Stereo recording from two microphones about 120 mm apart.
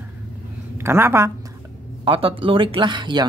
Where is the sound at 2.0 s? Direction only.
50° right (ahead or behind).